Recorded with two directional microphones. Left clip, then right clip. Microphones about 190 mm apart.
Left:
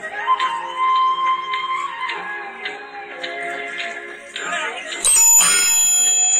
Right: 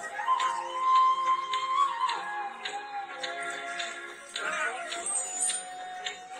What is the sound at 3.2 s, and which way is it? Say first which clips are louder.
Music: left 12 dB; 30° right (ahead or behind).